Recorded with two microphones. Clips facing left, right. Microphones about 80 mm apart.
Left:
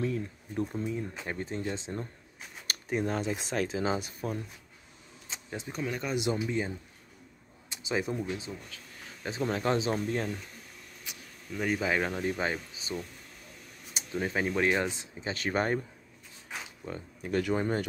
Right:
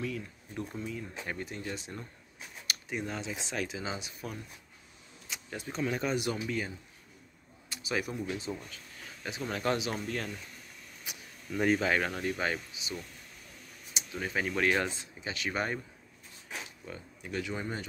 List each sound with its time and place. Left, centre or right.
0.0 s speech: left
2.6 s speech: left
5.3 s a sound: left
5.7 s speech: centre
6.1 s speech: left
7.7 s a sound: left
8.5 s speech: centre
9.2 s speech: left
11.1 s a sound: centre
11.8 s speech: centre
12.8 s speech: left
14.1 s speech: left
15.1 s speech: left
16.8 s speech: left